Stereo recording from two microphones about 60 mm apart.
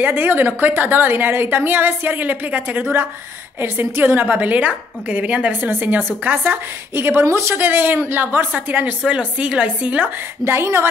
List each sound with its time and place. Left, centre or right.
0.0 s a woman's voice: right
7.5 s a woman's voice: right
9.0 s a woman's voice: centre
10.4 s a woman's voice: right